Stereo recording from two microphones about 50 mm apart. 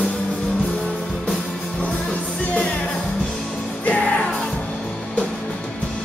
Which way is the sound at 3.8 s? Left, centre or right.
Left.